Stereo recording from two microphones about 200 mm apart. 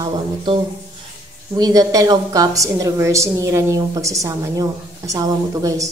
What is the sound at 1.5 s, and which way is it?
A woman's voice, 20° right (ahead or behind).